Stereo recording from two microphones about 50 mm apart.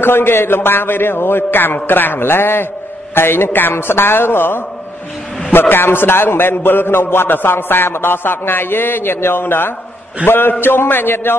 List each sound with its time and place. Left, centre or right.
0.0 s a man's voice: left